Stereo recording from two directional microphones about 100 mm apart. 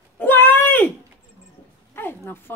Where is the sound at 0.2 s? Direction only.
20° left (ahead or behind).